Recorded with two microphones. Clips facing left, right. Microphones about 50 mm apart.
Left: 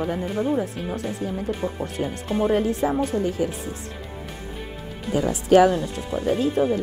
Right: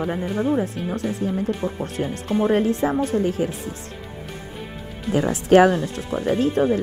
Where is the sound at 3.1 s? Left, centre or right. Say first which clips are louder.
Right 2 dB; right.